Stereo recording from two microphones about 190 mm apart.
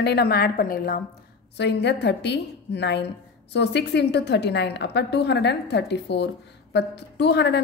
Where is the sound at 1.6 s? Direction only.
60° left (ahead or behind).